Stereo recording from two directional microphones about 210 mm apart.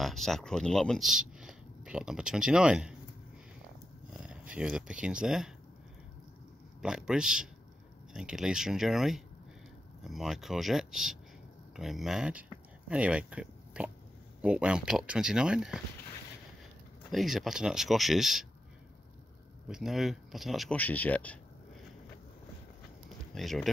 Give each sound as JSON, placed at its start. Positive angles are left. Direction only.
{"t": 0.0, "sound": "speech", "side_deg": 0}
{"t": 4.2, "sound": "speech", "side_deg": -5}
{"t": 6.8, "sound": "speech", "side_deg": -5}
{"t": 17.1, "sound": "speech", "side_deg": 0}
{"t": 19.7, "sound": "speech", "side_deg": 0}
{"t": 23.0, "sound": "a sound", "side_deg": 0}